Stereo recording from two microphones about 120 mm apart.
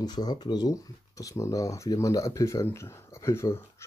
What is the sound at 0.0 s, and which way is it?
Speech, 35° left (ahead or behind).